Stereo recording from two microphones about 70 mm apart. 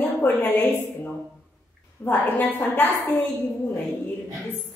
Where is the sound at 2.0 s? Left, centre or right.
Left.